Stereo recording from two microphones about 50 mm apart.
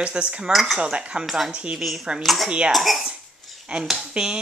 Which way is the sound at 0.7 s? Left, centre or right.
Right.